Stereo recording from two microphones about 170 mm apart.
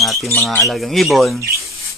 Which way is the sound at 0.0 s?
Centre (ahead or behind).